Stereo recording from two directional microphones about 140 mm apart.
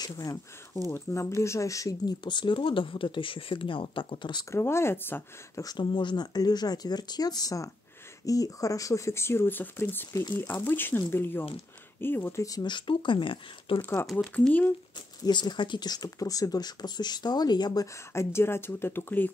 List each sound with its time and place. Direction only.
0.0 s speech: 25° left (ahead or behind)
4.5 s speech: 20° left (ahead or behind)
5.7 s speech: 35° left (ahead or behind)
13.7 s speech: 15° left (ahead or behind)
15.2 s speech: 30° left (ahead or behind); by 19.3 s 15° left (ahead or behind)